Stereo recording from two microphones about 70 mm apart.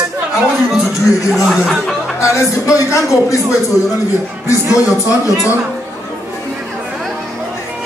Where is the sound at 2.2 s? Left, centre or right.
Left.